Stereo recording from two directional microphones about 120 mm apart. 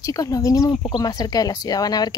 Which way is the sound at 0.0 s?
30° left (ahead or behind).